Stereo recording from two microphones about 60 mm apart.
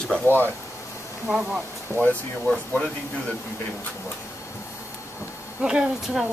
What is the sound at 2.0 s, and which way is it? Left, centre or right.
Speech, centre.